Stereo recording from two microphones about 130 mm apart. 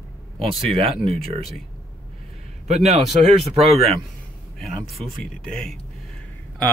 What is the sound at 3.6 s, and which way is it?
Speech, centre (ahead or behind).